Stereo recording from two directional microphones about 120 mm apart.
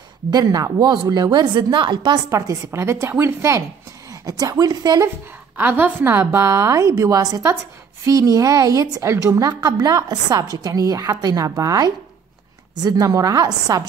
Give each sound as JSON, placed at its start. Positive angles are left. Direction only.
{"t": 0.3, "sound": "a woman's voice", "side_deg": -30}
{"t": 2.3, "sound": "a woman's voice", "side_deg": -25}
{"t": 5.6, "sound": "a woman's voice", "side_deg": -15}